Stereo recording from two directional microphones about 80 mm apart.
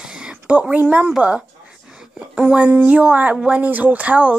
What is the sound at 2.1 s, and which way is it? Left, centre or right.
Speech, centre.